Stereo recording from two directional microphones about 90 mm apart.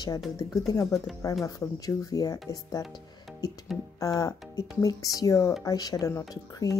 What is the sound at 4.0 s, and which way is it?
Speech, 40° left (ahead or behind).